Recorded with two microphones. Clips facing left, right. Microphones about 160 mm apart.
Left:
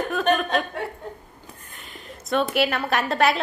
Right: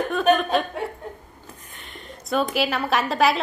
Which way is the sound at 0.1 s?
Centre (ahead or behind).